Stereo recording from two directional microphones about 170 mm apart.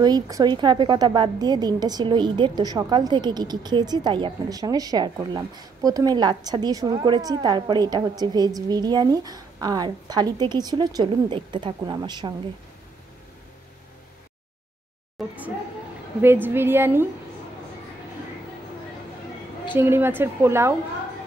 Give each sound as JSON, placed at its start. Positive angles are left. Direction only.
{"t": 0.0, "sound": "a woman's voice", "side_deg": -25}
{"t": 16.2, "sound": "a woman's voice", "side_deg": -10}
{"t": 19.8, "sound": "a woman's voice", "side_deg": -15}